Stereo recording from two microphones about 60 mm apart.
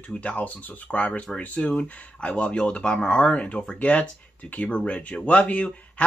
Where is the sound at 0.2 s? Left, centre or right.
Left.